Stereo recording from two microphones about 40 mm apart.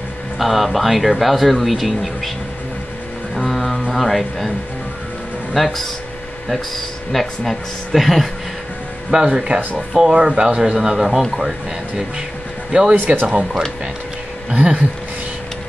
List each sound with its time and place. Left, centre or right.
0.4 s speech: centre
3.3 s a sound: centre
3.9 s speech: centre
5.5 s speech: centre
7.1 s speech: centre
9.1 s speech: centre
12.9 s speech: right
13.3 s speech: right